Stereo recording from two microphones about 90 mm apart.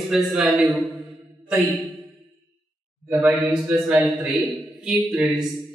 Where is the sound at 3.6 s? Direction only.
15° right (ahead or behind).